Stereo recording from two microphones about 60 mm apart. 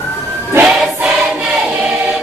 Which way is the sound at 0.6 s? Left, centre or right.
Right.